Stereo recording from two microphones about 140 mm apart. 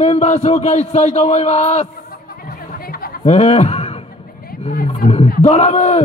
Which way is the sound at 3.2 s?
50° left (ahead or behind).